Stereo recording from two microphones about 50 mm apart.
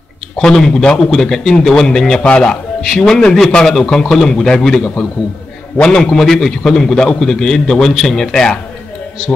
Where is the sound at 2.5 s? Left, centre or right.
Centre.